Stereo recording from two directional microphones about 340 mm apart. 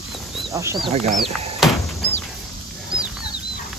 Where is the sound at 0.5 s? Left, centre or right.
Centre.